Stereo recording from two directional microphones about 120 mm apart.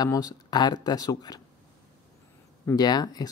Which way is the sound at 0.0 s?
30° left (ahead or behind).